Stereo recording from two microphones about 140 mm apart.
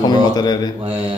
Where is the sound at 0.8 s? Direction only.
45° right (ahead or behind).